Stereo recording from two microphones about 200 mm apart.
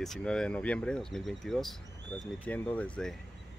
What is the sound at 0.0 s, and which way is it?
Speech, 5° left (ahead or behind).